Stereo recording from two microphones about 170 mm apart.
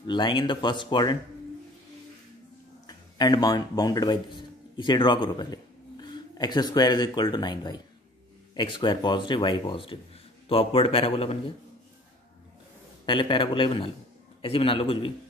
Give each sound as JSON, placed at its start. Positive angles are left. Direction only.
{"t": 0.0, "sound": "speech", "side_deg": 25}
{"t": 2.9, "sound": "a man's voice", "side_deg": 25}
{"t": 13.0, "sound": "a man's voice", "side_deg": 30}